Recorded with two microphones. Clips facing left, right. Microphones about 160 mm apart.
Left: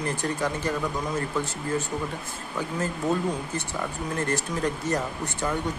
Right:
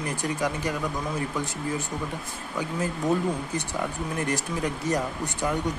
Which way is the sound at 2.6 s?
15° right (ahead or behind).